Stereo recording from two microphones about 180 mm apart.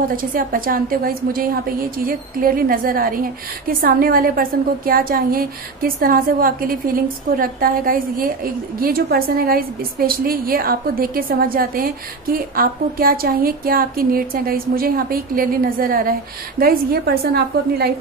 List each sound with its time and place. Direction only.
0.1 s a woman's voice: 50° right (ahead or behind)